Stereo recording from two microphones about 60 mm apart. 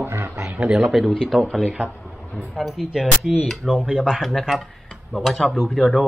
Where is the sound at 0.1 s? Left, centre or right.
Right.